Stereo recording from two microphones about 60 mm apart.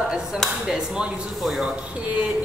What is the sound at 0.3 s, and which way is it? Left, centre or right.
Speech, centre.